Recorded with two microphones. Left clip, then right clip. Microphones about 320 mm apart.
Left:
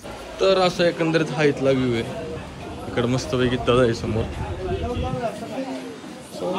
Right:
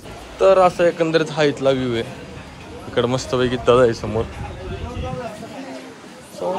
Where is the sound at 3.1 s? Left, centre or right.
Centre.